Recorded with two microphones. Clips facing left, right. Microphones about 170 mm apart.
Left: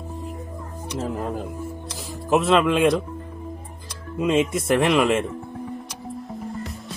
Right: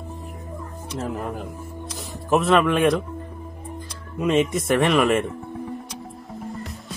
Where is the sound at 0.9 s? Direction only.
15° left (ahead or behind).